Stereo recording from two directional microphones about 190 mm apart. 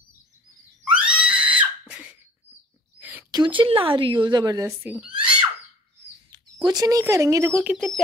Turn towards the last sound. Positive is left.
turn(degrees=-5)  # may be behind; listen again after turning